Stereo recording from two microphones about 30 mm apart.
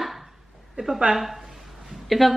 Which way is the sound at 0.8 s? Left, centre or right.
Right.